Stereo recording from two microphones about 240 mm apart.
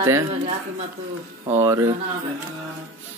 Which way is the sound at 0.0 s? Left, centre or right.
Centre.